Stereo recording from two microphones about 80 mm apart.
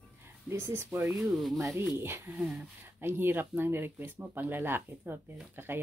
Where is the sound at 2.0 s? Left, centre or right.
Right.